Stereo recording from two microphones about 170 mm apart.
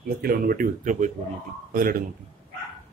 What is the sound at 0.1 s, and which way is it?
Speech, 60° right (ahead or behind).